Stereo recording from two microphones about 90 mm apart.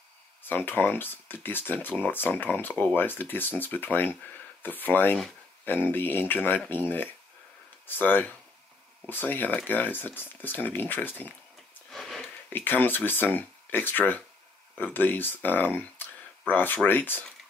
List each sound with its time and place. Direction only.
0.4 s speech: 20° left (ahead or behind)
11.9 s a sound: 5° left (ahead or behind)
12.4 s speech: 20° left (ahead or behind)